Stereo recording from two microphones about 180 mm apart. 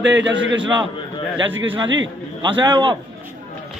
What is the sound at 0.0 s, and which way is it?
Speech, 90° right.